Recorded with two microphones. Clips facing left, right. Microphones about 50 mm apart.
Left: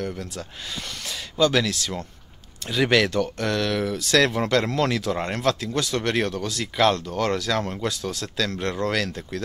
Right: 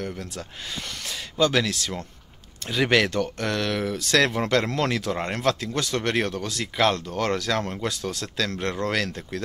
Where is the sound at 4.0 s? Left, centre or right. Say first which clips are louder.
Left 1 dB; right.